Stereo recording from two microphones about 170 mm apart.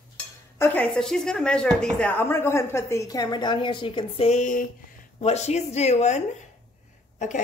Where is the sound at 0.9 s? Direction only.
5° left (ahead or behind).